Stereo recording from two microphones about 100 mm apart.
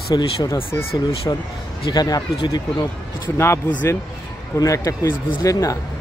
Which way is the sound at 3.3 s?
25° left (ahead or behind).